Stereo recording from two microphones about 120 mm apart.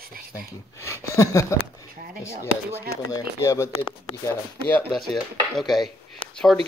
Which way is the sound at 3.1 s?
25° left (ahead or behind).